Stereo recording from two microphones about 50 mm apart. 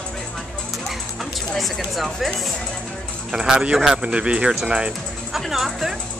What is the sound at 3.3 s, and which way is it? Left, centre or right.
Speech, centre.